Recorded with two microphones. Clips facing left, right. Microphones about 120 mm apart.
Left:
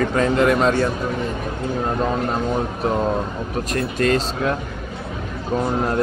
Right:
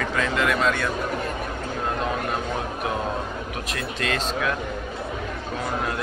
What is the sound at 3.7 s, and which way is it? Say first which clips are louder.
Speech: left 9 dB; 40° left (ahead or behind).